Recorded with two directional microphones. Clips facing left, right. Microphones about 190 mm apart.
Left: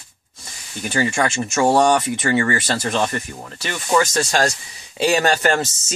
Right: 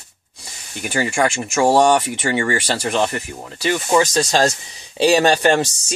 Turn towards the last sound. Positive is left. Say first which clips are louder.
# right 3 dB
turn(degrees=-20)  # may be behind; listen again after turning